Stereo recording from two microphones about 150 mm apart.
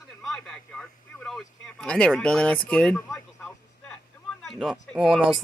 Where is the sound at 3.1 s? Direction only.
10° left (ahead or behind).